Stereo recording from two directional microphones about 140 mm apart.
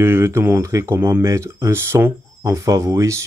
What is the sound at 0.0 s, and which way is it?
Speech, 20° right (ahead or behind).